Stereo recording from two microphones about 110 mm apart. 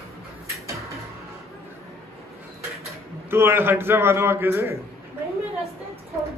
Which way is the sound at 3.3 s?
20° right (ahead or behind).